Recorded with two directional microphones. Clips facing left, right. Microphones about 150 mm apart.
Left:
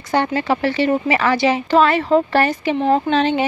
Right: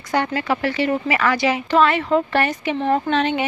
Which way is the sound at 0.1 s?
30° left (ahead or behind).